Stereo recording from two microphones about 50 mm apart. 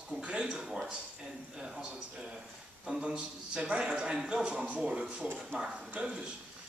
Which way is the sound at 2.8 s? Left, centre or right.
Centre.